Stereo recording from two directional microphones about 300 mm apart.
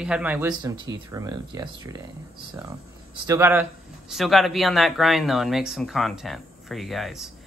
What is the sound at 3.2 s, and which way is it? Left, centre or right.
Speech, centre.